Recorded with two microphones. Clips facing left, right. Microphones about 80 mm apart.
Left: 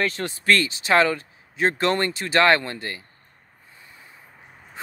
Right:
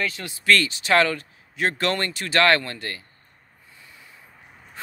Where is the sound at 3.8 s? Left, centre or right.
Left.